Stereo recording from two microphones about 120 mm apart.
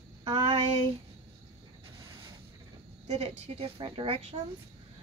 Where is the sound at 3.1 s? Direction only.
60° right (ahead or behind).